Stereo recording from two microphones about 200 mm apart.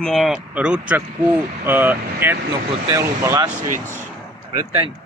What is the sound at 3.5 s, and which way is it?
Speech, 35° right (ahead or behind).